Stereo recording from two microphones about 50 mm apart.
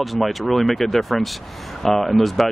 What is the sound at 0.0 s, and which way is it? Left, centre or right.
Speech, centre.